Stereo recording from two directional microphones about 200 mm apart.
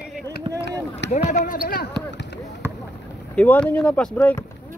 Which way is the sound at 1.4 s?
45° left (ahead or behind).